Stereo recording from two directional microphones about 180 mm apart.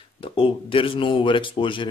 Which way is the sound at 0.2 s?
30° left (ahead or behind).